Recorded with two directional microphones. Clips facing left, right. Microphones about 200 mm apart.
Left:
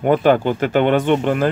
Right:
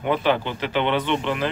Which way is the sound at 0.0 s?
45° left (ahead or behind).